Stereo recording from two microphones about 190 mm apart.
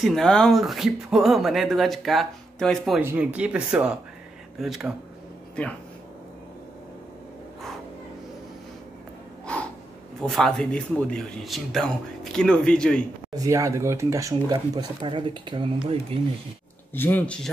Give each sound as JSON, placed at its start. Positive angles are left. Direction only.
{"t": 0.0, "sound": "speech", "side_deg": 0}
{"t": 3.0, "sound": "speech", "side_deg": -10}
{"t": 10.2, "sound": "speech", "side_deg": 5}
{"t": 13.3, "sound": "speech", "side_deg": -20}
{"t": 16.9, "sound": "speech", "side_deg": 10}